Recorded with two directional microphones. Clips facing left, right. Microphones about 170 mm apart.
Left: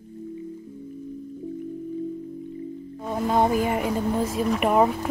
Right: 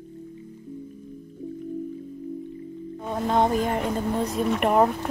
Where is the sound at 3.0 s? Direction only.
5° left (ahead or behind).